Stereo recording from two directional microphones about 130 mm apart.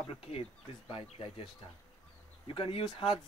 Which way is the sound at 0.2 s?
45° left (ahead or behind).